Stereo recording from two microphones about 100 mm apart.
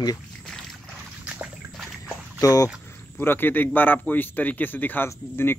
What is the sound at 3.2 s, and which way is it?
Speech, 20° left (ahead or behind).